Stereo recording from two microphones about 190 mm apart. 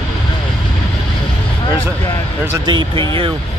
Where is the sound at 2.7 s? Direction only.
25° right (ahead or behind).